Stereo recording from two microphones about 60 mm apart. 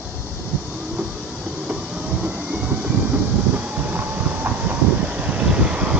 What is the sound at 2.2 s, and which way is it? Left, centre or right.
Train, right.